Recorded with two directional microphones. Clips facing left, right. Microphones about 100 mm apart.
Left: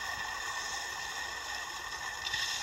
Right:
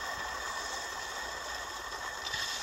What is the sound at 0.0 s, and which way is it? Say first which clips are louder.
Vehicle: right 1 dB; 40° right (ahead or behind).